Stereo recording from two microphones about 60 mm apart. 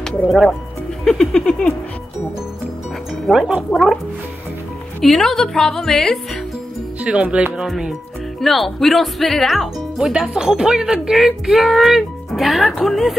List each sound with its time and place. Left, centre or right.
0.3 s speech: centre
3.3 s speech: centre
5.0 s speech: centre
7.0 s speech: centre
7.5 s speech: centre
8.4 s speech: centre
9.9 s speech: centre